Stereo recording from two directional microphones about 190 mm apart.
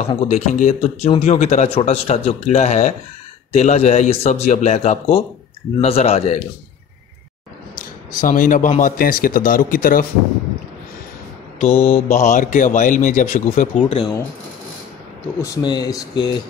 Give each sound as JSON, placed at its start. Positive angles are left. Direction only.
{"t": 0.1, "sound": "a man's voice", "side_deg": 35}
{"t": 7.8, "sound": "speech", "side_deg": 45}
{"t": 11.6, "sound": "mantra", "side_deg": 10}
{"t": 12.1, "sound": "speech", "side_deg": 40}
{"t": 13.8, "sound": "a man's voice", "side_deg": 30}
{"t": 15.4, "sound": "speech", "side_deg": 20}